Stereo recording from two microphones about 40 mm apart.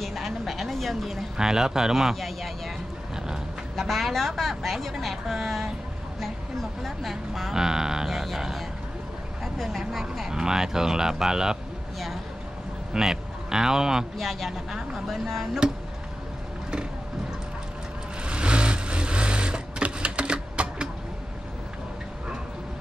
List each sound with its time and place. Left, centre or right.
0.0 s a sound: centre
1.3 s speech: centre
2.1 s a sound: centre
3.7 s speech: centre
6.8 s speech: centre
7.5 s a woman's voice: centre
10.3 s speech: centre
12.9 s speech: centre
14.1 s speech: centre
18.2 s vehicle: right